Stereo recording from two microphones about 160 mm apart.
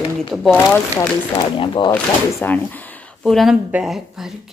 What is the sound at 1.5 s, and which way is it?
Speech, 30° left (ahead or behind).